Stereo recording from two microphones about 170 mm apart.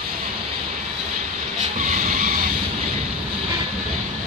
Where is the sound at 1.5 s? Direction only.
50° right (ahead or behind).